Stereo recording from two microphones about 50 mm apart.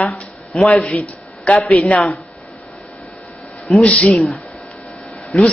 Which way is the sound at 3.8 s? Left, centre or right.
Left.